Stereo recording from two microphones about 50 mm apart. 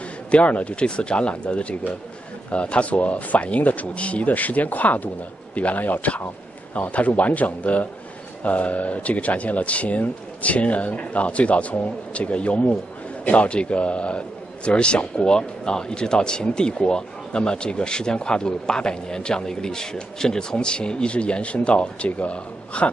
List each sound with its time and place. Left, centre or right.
0.3 s a man's voice: left